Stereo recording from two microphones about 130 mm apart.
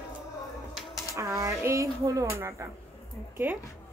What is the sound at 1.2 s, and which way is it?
Speech, 25° right (ahead or behind).